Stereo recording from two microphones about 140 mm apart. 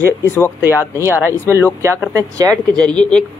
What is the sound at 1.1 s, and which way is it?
Speech, 15° left (ahead or behind).